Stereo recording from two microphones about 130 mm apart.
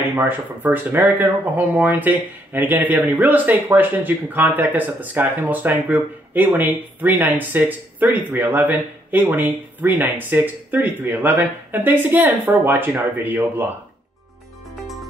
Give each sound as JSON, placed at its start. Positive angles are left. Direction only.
{"t": 0.1, "sound": "speech", "side_deg": -15}